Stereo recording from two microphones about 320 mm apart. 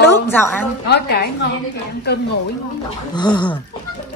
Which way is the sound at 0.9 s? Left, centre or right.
Left.